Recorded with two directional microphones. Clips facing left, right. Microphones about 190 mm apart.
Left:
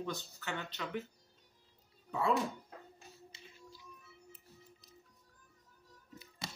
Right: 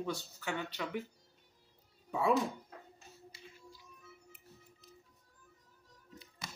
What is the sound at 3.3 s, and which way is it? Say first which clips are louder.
Music: right 3 dB; 25° left (ahead or behind).